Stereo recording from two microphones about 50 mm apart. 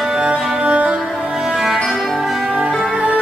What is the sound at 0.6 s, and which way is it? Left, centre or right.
Music, right.